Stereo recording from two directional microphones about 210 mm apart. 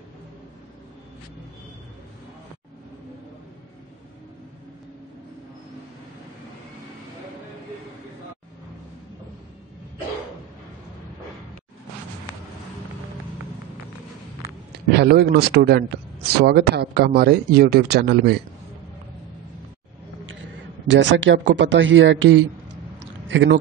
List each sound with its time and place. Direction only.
14.9 s speech: 50° right (ahead or behind)
20.3 s a man's voice: 60° right (ahead or behind)